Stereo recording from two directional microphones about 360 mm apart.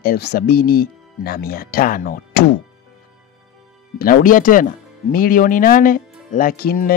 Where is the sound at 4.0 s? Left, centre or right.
Left.